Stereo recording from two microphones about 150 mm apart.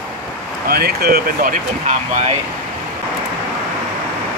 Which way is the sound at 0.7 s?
90° right.